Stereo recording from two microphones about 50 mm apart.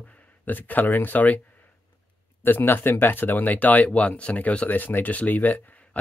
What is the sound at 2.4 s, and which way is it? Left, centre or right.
Speech, left.